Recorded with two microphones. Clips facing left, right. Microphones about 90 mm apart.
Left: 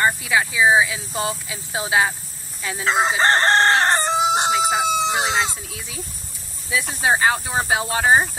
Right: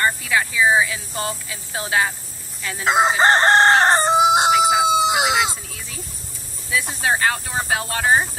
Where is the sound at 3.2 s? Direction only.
20° right (ahead or behind).